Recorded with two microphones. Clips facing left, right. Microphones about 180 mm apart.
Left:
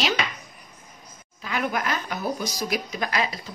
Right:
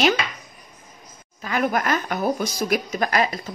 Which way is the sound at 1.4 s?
45° right (ahead or behind).